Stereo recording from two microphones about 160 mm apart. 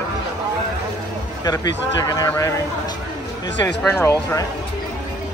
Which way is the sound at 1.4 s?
25° left (ahead or behind).